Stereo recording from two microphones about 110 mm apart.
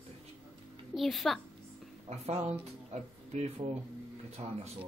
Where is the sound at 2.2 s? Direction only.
70° right (ahead or behind).